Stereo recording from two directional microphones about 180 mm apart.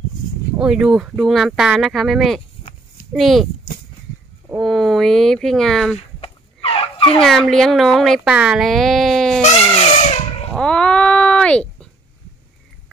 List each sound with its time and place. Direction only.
0.6 s speech: 5° right (ahead or behind)
4.6 s speech: centre (ahead or behind)
5.9 s fowl: 35° left (ahead or behind)
7.2 s speech: centre (ahead or behind)
9.4 s a sound: 35° left (ahead or behind)
10.5 s dog: 5° left (ahead or behind)